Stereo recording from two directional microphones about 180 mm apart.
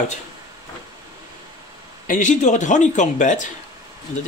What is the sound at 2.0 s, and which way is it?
A man's voice, 45° left (ahead or behind).